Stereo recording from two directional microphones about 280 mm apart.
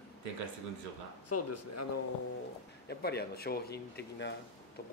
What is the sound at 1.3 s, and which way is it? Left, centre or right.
Speech, left.